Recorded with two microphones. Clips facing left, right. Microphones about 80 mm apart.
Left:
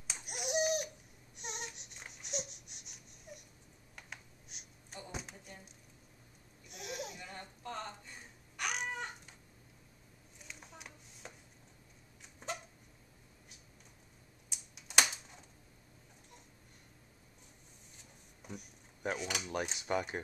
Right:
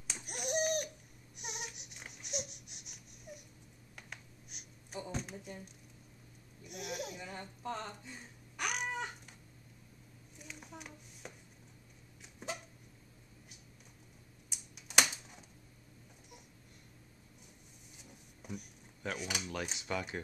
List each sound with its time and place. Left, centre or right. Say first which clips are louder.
0.0 s babbling: even; centre
1.4 s baby cry: left 1 dB; centre
3.9 s computer keyboard: even; centre
5.1 s a sound: right 4 dB; centre
6.7 s laughter: right 2 dB; centre
8.0 s babbling: right 3 dB; centre
10.4 s a sound: right 3 dB; centre
14.5 s computer keyboard: right 1 dB; centre
17.9 s a sound: right 3 dB; centre
19.1 s speech: left 1 dB; centre
19.7 s speech: left 3 dB; left